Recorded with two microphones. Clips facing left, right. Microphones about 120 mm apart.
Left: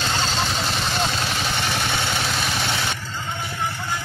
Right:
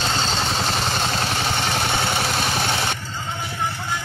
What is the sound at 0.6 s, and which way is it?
Vehicle, 35° right (ahead or behind).